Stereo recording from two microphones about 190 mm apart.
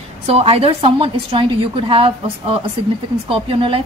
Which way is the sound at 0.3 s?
30° right (ahead or behind).